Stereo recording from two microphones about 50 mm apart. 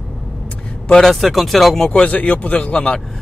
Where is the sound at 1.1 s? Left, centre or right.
Centre.